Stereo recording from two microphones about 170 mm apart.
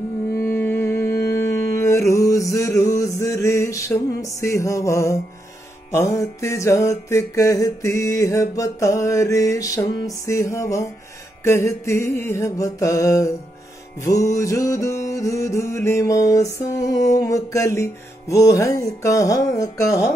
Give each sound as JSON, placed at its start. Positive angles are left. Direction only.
{"t": 0.4, "sound": "music", "side_deg": 15}